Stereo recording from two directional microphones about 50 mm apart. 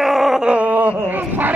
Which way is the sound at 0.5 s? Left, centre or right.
Right.